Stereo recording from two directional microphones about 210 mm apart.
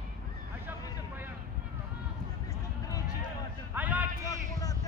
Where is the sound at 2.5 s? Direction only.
15° left (ahead or behind).